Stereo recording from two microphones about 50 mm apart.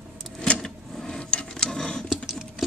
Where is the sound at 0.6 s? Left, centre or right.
Centre.